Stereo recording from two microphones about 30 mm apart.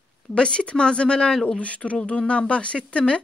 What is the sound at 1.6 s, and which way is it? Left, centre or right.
Speech, left.